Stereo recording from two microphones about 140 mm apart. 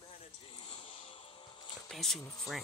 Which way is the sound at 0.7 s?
40° left (ahead or behind).